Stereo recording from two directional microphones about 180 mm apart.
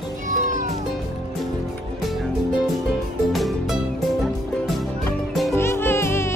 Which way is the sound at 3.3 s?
Centre (ahead or behind).